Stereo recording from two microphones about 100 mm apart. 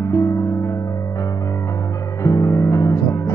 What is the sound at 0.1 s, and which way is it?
Music, 30° left (ahead or behind).